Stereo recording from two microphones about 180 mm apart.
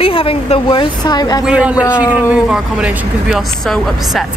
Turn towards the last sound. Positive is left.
turn(degrees=-5)  # may be behind; listen again after turning